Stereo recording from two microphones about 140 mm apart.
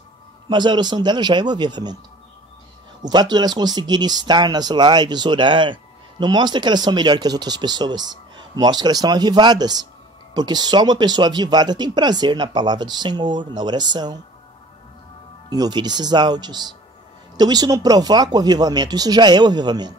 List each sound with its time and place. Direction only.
0.5 s speech: 30° right (ahead or behind)
3.0 s speech: 30° right (ahead or behind)
15.5 s speech: 30° right (ahead or behind)